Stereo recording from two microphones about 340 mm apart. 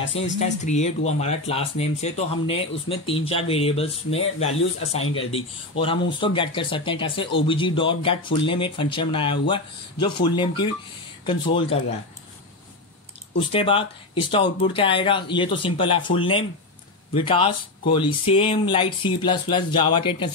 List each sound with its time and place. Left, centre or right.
0.2 s speech: centre
13.5 s speech: centre